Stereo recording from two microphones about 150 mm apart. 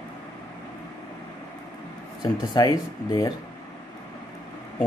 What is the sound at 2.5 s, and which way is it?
Speech, 25° left (ahead or behind).